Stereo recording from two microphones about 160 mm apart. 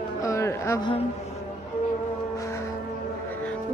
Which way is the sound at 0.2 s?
15° left (ahead or behind).